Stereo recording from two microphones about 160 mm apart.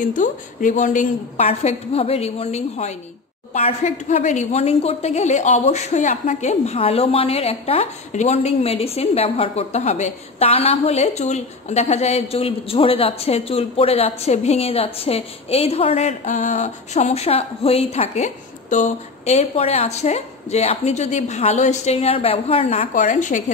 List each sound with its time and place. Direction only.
0.0 s speech: 55° left (ahead or behind)
1.3 s a woman's voice: 40° left (ahead or behind)